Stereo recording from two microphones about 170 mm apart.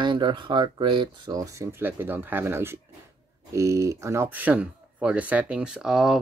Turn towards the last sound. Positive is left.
turn(degrees=-5)  # may be behind; listen again after turning